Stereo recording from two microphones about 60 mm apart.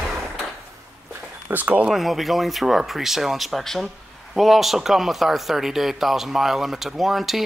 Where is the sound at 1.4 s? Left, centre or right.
Right.